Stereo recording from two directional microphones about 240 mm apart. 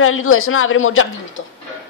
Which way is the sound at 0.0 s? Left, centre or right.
Left.